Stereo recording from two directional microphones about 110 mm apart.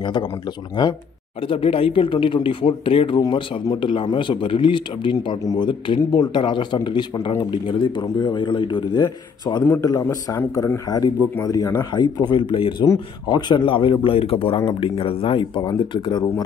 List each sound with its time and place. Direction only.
1.5 s speech: 55° left (ahead or behind)
3.2 s speech: 40° left (ahead or behind)
9.7 s a man's voice: 30° left (ahead or behind)